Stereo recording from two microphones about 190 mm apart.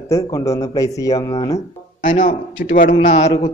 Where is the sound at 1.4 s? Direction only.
40° left (ahead or behind).